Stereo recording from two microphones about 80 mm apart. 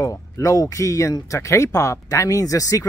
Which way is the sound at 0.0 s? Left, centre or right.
Left.